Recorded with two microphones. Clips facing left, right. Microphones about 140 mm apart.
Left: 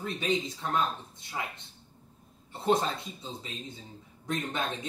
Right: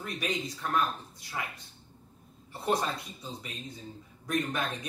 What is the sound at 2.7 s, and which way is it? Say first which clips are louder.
Speech: left 3 dB; 25° left (ahead or behind).